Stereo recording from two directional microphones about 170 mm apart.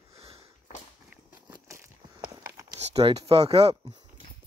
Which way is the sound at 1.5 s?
20° right (ahead or behind).